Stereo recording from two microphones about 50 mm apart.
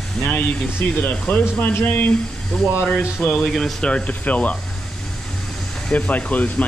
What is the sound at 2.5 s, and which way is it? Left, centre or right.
Speech, centre.